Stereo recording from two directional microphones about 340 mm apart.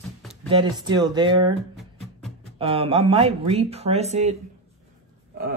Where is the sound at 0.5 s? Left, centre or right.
Centre.